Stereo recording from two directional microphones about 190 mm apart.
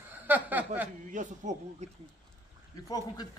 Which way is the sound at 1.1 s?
40° right (ahead or behind).